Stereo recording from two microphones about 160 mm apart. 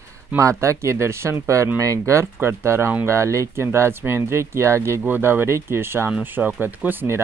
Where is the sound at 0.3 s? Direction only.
20° right (ahead or behind).